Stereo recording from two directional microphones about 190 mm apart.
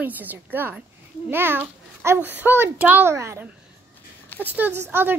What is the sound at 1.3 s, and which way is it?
A woman's voice, 10° right (ahead or behind).